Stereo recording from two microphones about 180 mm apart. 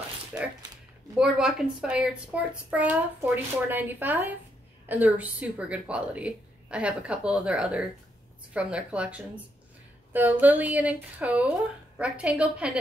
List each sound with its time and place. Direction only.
0.3 s speech: 20° right (ahead or behind)
1.1 s a woman's voice: 5° right (ahead or behind)